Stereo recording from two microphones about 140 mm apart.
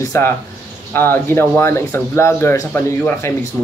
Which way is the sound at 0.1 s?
20° left (ahead or behind).